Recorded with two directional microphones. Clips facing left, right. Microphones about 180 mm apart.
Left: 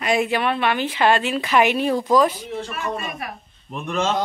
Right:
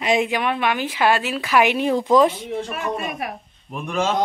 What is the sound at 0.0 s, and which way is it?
A woman's voice, 20° right (ahead or behind).